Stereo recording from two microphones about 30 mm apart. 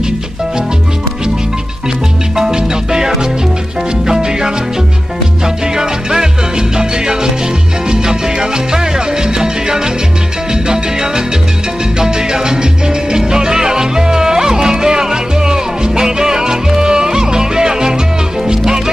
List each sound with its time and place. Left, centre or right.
2.3 s music: centre
7.9 s salsa music: right